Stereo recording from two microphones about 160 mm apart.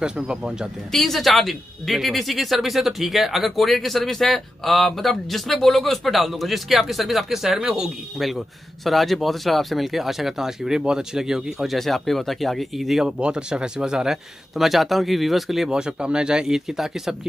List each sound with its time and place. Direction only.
0.0 s speech: 5° right (ahead or behind)